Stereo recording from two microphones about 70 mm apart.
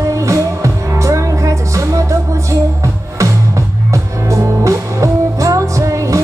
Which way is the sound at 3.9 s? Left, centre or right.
Right.